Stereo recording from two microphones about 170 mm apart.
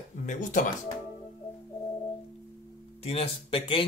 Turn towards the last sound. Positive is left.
turn(degrees=30)  # may be behind; listen again after turning